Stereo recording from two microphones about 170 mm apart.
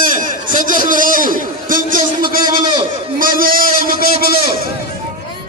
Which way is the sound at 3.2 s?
55° right (ahead or behind).